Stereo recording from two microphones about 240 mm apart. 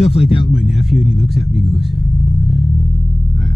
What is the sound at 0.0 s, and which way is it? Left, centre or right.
Speech, left.